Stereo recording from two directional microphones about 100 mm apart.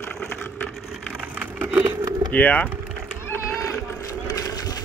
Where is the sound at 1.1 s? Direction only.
10° right (ahead or behind).